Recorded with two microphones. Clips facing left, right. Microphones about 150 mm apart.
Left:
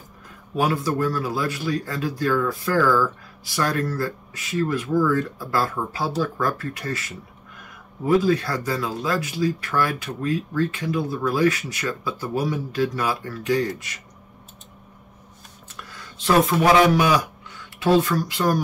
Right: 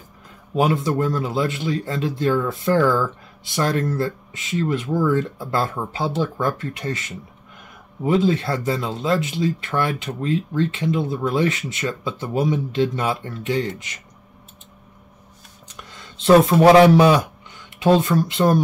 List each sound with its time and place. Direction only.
0.6 s speech: 25° right (ahead or behind)
15.7 s speech: 20° right (ahead or behind)